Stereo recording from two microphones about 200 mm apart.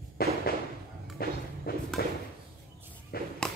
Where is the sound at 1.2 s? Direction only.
50° left (ahead or behind).